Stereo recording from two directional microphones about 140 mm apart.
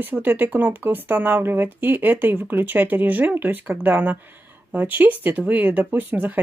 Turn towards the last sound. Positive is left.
turn(degrees=-10)  # may be behind; listen again after turning